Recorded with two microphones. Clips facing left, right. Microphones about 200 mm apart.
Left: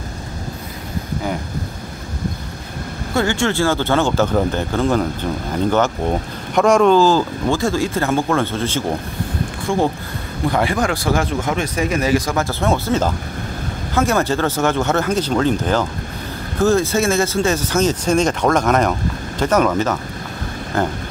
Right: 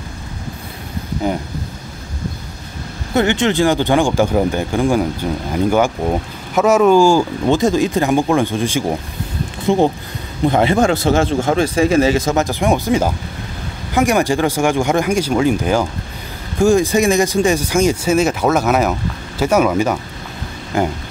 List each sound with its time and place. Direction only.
3.2 s a man's voice: 20° right (ahead or behind)